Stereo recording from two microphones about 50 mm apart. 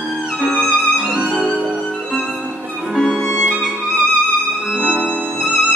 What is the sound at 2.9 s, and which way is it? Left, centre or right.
Music, centre.